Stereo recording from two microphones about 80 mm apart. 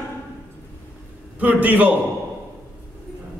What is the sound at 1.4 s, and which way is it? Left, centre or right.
Speech, centre.